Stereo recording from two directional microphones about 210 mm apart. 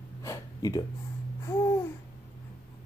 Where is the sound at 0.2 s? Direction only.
15° left (ahead or behind).